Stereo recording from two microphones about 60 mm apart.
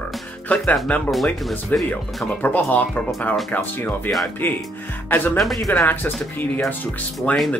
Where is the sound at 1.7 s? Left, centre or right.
Left.